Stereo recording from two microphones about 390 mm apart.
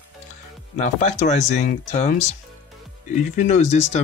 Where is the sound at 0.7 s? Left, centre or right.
Centre.